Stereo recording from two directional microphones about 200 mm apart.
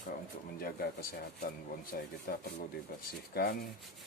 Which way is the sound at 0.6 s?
45° left (ahead or behind).